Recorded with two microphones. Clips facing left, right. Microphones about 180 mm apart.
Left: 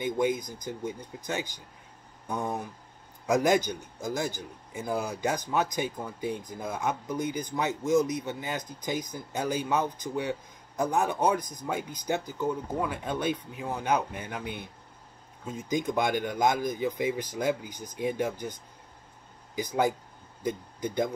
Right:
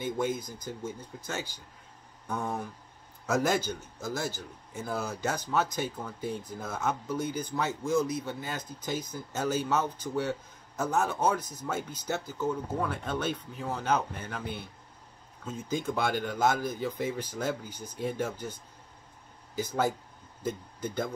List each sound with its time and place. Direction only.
0.0 s a man's voice: 15° left (ahead or behind)